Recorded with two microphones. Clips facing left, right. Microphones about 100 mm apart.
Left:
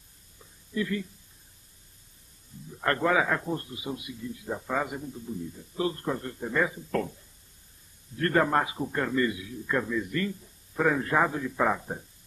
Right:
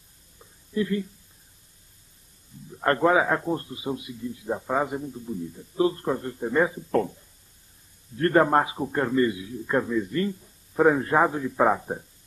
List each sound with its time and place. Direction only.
0.7 s a man's voice: 30° right (ahead or behind)
2.8 s a man's voice: 30° right (ahead or behind)
8.2 s a man's voice: 30° right (ahead or behind)